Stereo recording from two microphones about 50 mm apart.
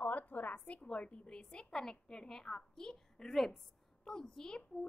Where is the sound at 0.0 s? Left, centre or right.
Left.